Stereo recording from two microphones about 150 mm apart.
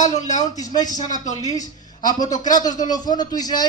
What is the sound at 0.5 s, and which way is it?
Speech, 25° left (ahead or behind).